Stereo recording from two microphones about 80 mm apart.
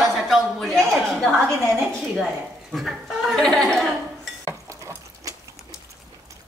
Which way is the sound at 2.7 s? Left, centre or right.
Centre.